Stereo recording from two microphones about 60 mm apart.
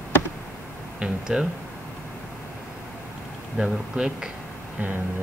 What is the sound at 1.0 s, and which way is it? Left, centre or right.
Speech, centre.